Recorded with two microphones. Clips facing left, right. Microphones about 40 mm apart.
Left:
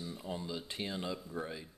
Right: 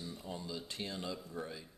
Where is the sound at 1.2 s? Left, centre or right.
Centre.